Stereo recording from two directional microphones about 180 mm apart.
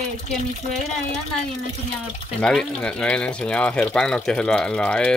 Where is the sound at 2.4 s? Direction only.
5° left (ahead or behind).